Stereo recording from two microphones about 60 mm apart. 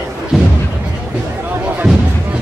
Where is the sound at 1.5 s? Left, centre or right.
Right.